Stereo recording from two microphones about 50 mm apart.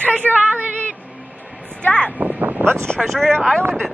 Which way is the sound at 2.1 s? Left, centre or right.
Right.